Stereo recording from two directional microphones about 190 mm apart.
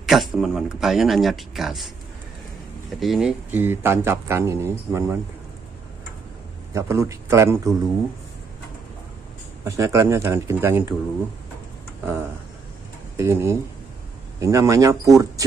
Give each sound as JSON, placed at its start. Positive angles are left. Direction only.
{"t": 0.0, "sound": "speech", "side_deg": 0}
{"t": 2.9, "sound": "speech", "side_deg": 0}
{"t": 6.7, "sound": "speech", "side_deg": -15}
{"t": 9.7, "sound": "speech", "side_deg": -15}
{"t": 13.2, "sound": "speech", "side_deg": -15}